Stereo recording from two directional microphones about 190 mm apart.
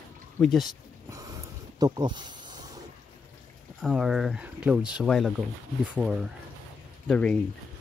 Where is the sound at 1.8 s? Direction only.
20° right (ahead or behind).